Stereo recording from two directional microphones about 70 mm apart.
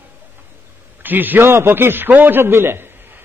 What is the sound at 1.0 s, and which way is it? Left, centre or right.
A man's voice, right.